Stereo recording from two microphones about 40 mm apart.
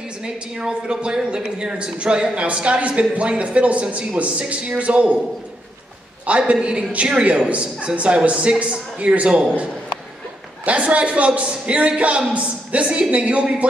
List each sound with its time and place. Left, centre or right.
0.2 s speech: centre
6.2 s speech: right
10.6 s a man's voice: right